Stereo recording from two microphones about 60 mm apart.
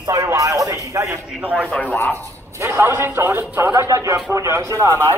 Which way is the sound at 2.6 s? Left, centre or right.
Right.